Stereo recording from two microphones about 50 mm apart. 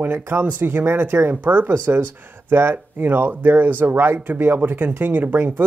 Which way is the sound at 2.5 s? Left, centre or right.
Right.